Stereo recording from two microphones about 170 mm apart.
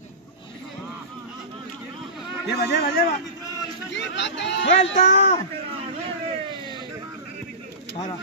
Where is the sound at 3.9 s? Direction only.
90° left.